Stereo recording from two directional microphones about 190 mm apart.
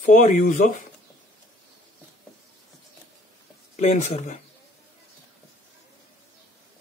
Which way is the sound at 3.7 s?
35° left (ahead or behind).